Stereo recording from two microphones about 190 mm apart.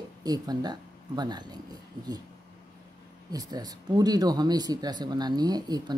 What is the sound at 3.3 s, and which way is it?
Speech, 20° right (ahead or behind).